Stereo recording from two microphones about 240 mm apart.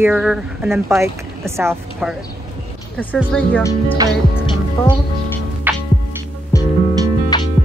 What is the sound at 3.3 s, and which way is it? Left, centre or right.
Speech, centre.